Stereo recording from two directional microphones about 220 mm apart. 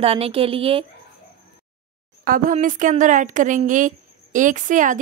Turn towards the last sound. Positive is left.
turn(degrees=-35)  # may be behind; listen again after turning